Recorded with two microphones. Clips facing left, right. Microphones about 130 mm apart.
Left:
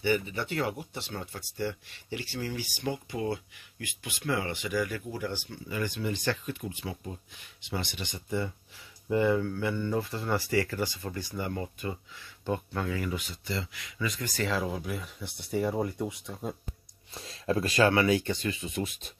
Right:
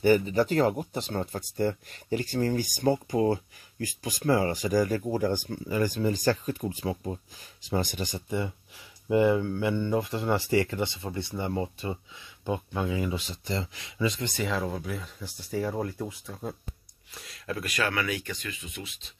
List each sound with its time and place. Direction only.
0.0 s speech: 40° right (ahead or behind)
8.3 s speech: 20° right (ahead or behind)
13.2 s speech: 35° right (ahead or behind)
14.5 s speech: 5° left (ahead or behind)
15.2 s speech: 65° left (ahead or behind)
15.5 s speech: centre (ahead or behind)
17.1 s speech: 30° left (ahead or behind)